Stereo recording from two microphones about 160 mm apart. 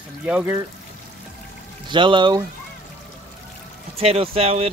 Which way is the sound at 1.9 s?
30° right (ahead or behind).